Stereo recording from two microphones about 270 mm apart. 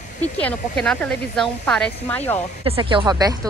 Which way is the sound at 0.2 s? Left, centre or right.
Centre.